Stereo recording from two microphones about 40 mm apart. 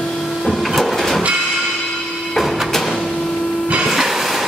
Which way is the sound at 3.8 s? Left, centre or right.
Centre.